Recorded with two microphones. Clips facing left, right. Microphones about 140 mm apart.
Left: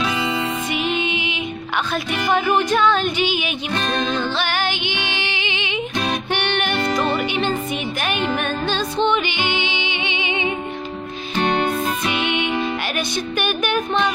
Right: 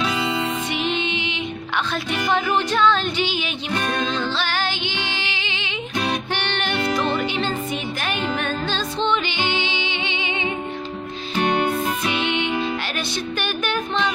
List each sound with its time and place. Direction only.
0.7 s music: 10° left (ahead or behind)
11.3 s music: 10° right (ahead or behind)
12.1 s music: 15° left (ahead or behind)